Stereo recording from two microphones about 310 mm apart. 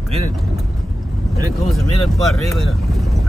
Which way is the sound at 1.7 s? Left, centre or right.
Centre.